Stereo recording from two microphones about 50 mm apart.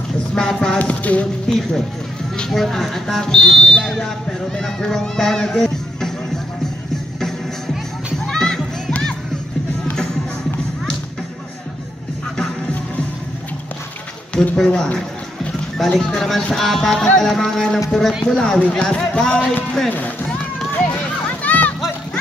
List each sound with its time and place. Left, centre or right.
0.3 s speech: centre
0.7 s music: left
1.5 s speech: centre
7.2 s music: centre
14.3 s a sound: left
14.6 s speech: centre
16.0 s speech: centre
16.5 s music: centre
16.9 s speech: centre
21.3 s a sound: left